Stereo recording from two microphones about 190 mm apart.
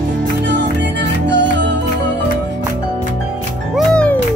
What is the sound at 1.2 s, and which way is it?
Music, 65° right (ahead or behind).